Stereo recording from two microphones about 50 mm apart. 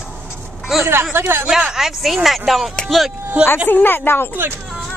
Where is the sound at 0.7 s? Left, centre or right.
Centre.